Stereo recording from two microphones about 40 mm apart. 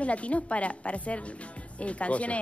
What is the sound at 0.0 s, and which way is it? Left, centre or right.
Speech, left.